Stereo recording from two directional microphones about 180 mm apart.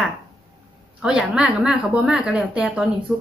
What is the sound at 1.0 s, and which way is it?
Speech, 5° right (ahead or behind).